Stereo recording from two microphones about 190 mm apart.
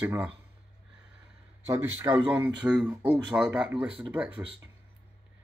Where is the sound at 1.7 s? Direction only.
10° right (ahead or behind).